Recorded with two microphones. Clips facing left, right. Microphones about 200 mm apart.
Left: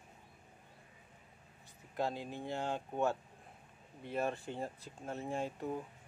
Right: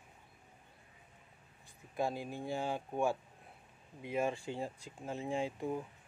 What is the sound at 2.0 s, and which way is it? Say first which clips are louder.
Speech: right 1 dB; 10° right (ahead or behind).